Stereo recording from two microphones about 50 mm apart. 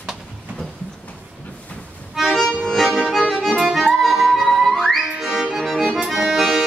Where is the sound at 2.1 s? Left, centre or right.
Centre.